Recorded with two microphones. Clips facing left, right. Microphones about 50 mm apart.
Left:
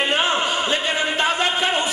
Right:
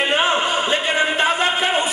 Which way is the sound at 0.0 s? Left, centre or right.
Centre.